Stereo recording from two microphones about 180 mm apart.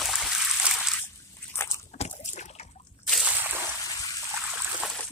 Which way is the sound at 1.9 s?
35° left (ahead or behind).